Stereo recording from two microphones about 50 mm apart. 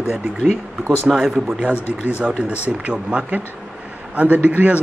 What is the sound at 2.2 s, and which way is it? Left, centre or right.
Speech, right.